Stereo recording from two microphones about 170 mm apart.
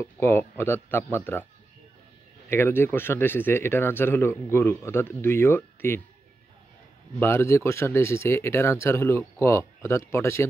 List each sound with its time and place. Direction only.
0.0 s speech: 15° left (ahead or behind)
2.5 s speech: 15° left (ahead or behind)
7.2 s speech: 15° left (ahead or behind)